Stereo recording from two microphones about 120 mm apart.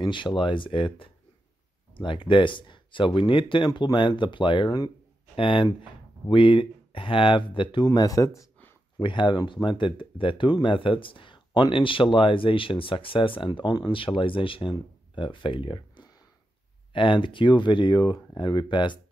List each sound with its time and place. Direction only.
0.0 s speech: 40° left (ahead or behind)
5.3 s speech: 45° left (ahead or behind); by 8.5 s 25° left (ahead or behind)
8.9 s speech: 40° left (ahead or behind)